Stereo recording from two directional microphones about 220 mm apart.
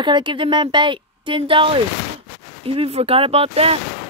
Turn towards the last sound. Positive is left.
turn(degrees=-25)  # may be behind; listen again after turning